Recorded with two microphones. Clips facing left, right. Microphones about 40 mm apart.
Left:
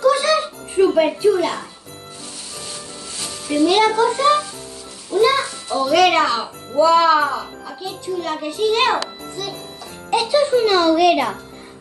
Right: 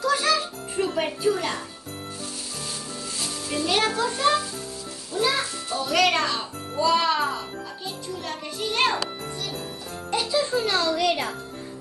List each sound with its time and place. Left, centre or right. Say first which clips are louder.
0.0 s music: left 7 dB; left
3.4 s a child's voice: left 9 dB; left
5.1 s music: left 8 dB; left
5.9 s a child's voice: left 7 dB; left
8.2 s a child's voice: left 12 dB; left
10.1 s a child's voice: left 8 dB; left